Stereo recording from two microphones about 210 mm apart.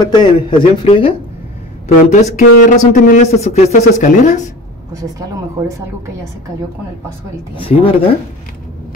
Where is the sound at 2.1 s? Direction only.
35° left (ahead or behind).